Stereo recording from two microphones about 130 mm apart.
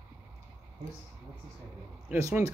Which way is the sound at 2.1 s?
15° right (ahead or behind).